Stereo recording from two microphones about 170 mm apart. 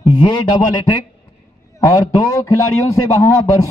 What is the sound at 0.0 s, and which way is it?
A man's voice, 25° left (ahead or behind).